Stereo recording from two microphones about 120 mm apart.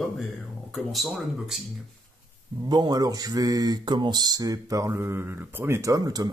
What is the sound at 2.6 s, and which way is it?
Speech, 35° right (ahead or behind).